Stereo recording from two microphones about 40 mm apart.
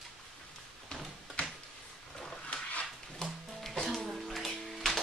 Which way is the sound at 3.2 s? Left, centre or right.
Centre.